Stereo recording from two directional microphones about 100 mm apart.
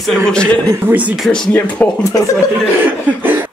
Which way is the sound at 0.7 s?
20° right (ahead or behind).